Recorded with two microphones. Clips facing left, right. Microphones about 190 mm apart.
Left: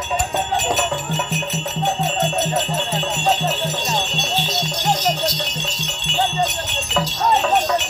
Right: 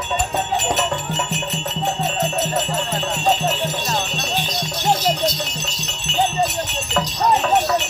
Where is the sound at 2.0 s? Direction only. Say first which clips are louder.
Left 1 dB; centre (ahead or behind).